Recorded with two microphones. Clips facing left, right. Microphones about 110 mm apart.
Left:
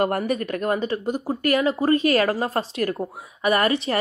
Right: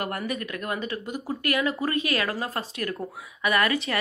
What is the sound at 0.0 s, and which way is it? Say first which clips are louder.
Speech: left 8 dB; 35° left (ahead or behind).